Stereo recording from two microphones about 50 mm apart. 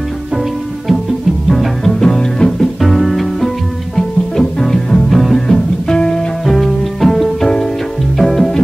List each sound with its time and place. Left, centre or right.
1.5 s music: centre
2.0 s music: centre
5.9 s music: centre
6.4 s music: centre